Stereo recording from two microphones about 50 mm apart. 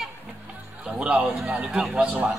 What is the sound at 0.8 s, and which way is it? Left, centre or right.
Speech, right.